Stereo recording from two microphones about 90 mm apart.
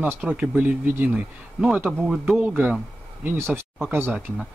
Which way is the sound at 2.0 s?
5° right (ahead or behind).